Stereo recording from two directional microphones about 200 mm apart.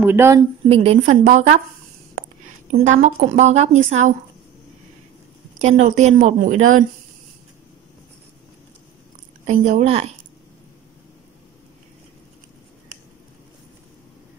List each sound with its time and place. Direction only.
0.0 s speech: 10° right (ahead or behind)
0.7 s a woman's voice: 30° right (ahead or behind)
2.7 s a woman's voice: 35° right (ahead or behind)
5.6 s a woman's voice: 40° right (ahead or behind)
9.5 s a woman's voice: 35° right (ahead or behind)